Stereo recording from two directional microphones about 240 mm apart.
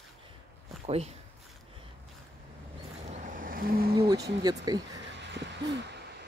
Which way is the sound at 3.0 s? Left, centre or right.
Right.